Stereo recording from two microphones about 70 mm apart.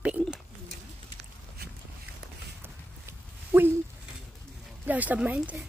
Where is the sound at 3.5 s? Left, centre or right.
Right.